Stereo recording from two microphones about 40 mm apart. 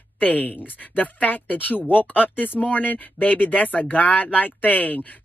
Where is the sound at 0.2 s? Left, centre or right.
Left.